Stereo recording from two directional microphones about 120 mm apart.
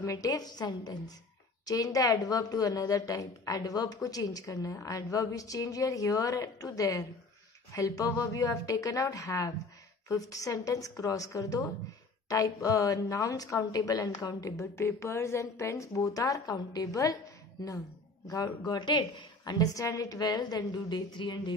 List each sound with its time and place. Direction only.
0.0 s a woman's voice: 30° left (ahead or behind)
18.2 s a woman's voice: 30° left (ahead or behind)